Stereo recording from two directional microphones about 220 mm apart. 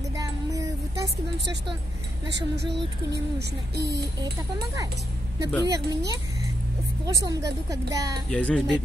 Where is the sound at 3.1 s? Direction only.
50° right (ahead or behind).